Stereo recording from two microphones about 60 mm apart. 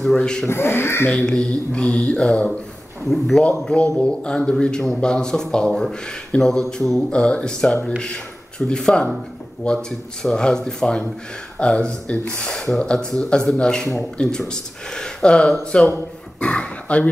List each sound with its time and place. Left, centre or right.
0.2 s speech: centre
0.5 s speech: left
1.1 s speech: centre
3.1 s speech: centre
4.0 s speech: centre
7.1 s speech: centre
16.3 s a sound: centre